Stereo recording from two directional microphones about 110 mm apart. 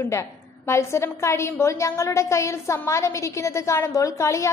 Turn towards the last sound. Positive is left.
turn(degrees=25)  # may be behind; listen again after turning